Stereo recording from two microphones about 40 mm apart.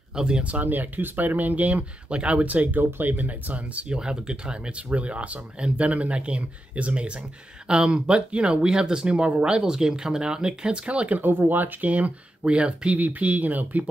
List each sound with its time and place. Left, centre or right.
0.1 s speech: right
0.5 s speech: right
2.0 s speech: right
3.9 s speech: right
11.1 s speech: right
13.0 s speech: right